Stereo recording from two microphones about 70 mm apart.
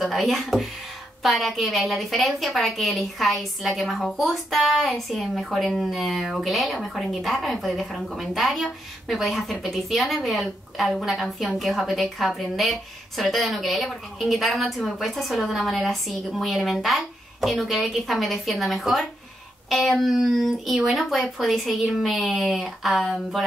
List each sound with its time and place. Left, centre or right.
0.0 s a woman's voice: centre